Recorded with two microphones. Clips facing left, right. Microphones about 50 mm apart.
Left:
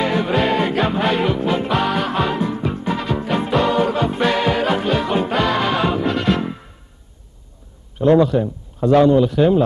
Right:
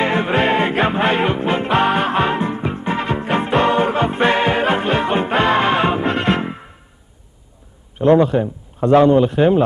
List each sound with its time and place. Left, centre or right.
0.0 s music: right
8.2 s speech: right